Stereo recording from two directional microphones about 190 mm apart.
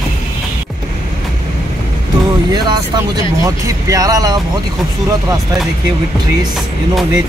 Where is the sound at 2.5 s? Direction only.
20° right (ahead or behind).